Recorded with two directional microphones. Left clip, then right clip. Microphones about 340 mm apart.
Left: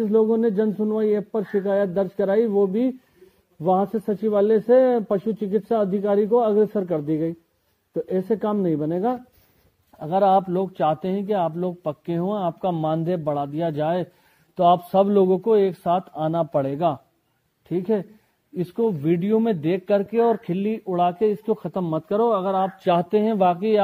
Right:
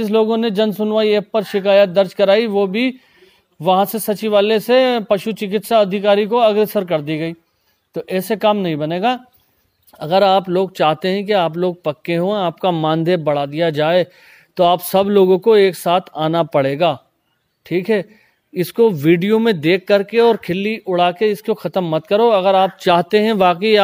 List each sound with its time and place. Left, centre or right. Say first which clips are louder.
0.0 s speech: right 4 dB; right
4.8 s speech: right 5 dB; right
6.4 s speech: right 6 dB; right
7.9 s speech: right 3 dB; right
9.9 s speech: right 5 dB; right